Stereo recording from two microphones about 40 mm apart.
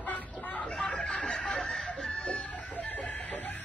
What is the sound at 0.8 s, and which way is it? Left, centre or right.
Snicker, left.